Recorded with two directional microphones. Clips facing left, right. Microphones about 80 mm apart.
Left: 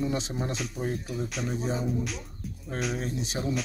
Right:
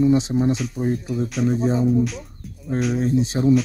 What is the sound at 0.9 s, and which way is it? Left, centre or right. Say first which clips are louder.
Speech: right 10 dB; right.